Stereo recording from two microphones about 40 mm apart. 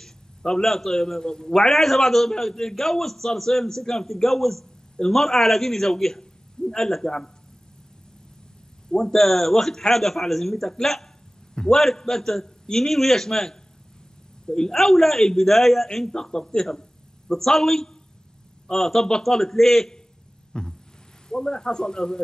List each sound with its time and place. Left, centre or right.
0.0 s a man's voice: centre
8.9 s a man's voice: centre
14.7 s a man's voice: centre
16.1 s a man's voice: centre
18.7 s a man's voice: left
19.2 s a man's voice: centre
20.5 s a sound: left
21.3 s a man's voice: centre